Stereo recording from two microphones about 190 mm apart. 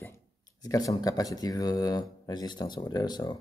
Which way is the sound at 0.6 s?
20° left (ahead or behind).